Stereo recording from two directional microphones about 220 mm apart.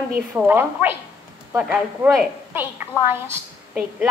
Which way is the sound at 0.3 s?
10° right (ahead or behind).